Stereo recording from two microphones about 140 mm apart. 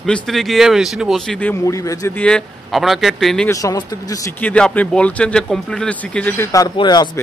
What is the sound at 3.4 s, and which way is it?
Speech, 25° left (ahead or behind).